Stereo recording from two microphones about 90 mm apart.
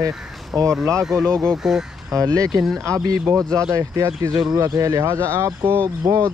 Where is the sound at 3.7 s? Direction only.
35° right (ahead or behind).